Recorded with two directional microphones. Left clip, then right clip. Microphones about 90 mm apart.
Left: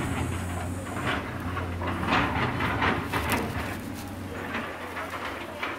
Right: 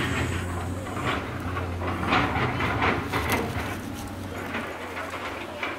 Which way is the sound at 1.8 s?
20° left (ahead or behind).